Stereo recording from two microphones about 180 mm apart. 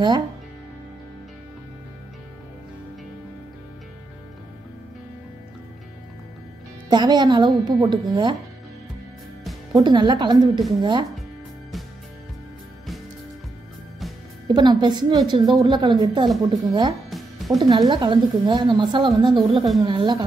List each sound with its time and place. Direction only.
6.9 s a woman's voice: 25° right (ahead or behind)
9.8 s a woman's voice: 25° right (ahead or behind)
14.5 s a woman's voice: 25° right (ahead or behind)
17.1 s music: centre (ahead or behind)
17.6 s a woman's voice: 25° right (ahead or behind)